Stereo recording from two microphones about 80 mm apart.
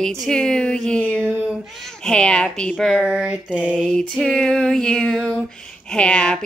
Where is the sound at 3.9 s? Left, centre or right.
Centre.